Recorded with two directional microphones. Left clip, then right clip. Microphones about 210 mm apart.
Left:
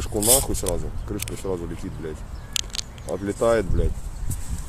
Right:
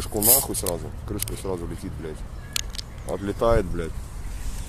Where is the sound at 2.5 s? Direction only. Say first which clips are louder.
Left 3 dB; 55° left (ahead or behind).